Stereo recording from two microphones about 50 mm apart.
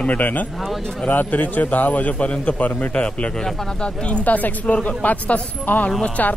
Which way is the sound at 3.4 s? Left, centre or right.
Centre.